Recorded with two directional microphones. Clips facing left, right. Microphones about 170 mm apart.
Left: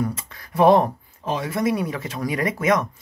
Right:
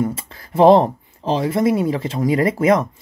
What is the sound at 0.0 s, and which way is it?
Speech, 25° right (ahead or behind).